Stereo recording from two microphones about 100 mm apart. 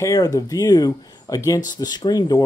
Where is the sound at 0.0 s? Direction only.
35° left (ahead or behind).